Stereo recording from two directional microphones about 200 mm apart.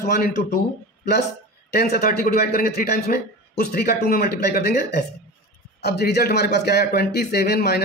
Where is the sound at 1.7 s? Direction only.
50° left (ahead or behind).